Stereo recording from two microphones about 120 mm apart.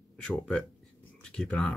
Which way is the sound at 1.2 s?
5° left (ahead or behind).